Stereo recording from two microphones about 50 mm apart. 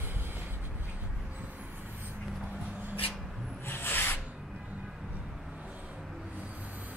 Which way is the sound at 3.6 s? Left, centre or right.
Left.